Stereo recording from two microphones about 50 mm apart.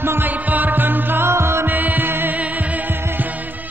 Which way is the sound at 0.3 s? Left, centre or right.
Right.